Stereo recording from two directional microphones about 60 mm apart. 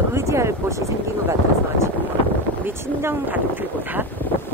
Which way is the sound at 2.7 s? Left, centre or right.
Right.